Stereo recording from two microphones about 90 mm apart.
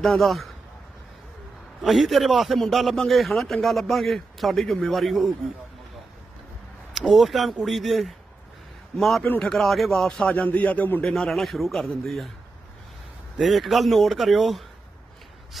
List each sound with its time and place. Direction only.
0.0 s a man's voice: centre (ahead or behind)
1.8 s a man's voice: centre (ahead or behind)
6.9 s a man's voice: centre (ahead or behind)
9.2 s speech: 15° left (ahead or behind)
9.5 s a man's voice: centre (ahead or behind)
13.4 s a man's voice: centre (ahead or behind)